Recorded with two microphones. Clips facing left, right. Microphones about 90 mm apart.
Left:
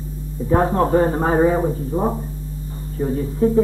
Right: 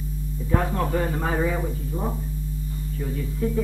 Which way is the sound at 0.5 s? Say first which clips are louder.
Left 8 dB; 35° left (ahead or behind).